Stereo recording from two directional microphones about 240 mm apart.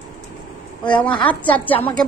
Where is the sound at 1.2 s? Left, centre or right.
Centre.